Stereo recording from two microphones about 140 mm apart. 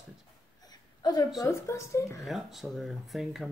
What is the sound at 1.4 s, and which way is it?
Speech, 20° left (ahead or behind).